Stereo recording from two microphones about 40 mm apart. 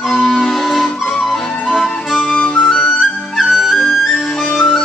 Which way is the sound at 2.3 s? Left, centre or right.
Left.